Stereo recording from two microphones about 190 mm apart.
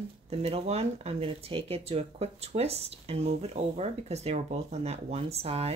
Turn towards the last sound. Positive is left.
turn(degrees=-30)  # may be behind; listen again after turning